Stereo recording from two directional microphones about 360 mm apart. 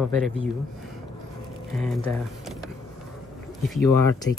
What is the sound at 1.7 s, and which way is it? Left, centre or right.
Speech, centre.